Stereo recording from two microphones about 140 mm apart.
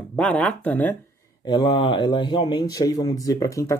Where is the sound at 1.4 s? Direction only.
35° left (ahead or behind).